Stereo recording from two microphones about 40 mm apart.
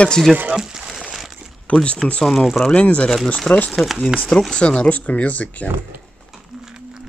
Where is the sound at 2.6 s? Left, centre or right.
Left.